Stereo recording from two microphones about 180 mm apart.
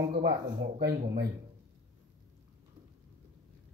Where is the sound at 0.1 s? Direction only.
60° right (ahead or behind).